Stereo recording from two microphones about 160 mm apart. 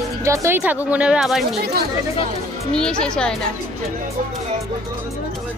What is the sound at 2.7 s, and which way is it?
Speech, 5° left (ahead or behind).